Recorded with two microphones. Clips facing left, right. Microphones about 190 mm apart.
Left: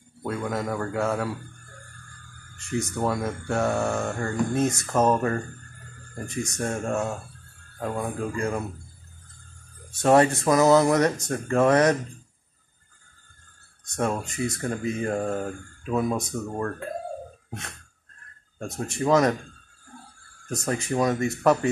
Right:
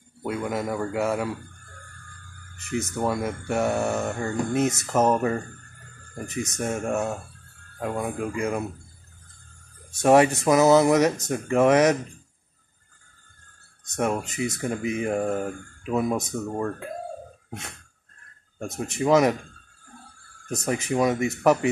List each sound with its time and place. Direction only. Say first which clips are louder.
0.2 s speech: right 1 dB; 15° right (ahead or behind)
3.2 s speech: right 1 dB; 15° right (ahead or behind)
3.9 s mantra: right 1 dB; 5° right (ahead or behind)
4.6 s speech: right 2 dB; 20° right (ahead or behind)
5.0 s speech: even; 10° right (ahead or behind)
6.1 s speech: even; 20° right (ahead or behind)
6.9 s speech: right 1 dB; 5° right (ahead or behind)
10.0 s speech: right 1 dB; 15° right (ahead or behind)
13.9 s speech: right 1 dB; 20° right (ahead or behind)
18.6 s speech: right 1 dB; 20° right (ahead or behind)
20.4 s speech: right 1 dB; 15° right (ahead or behind)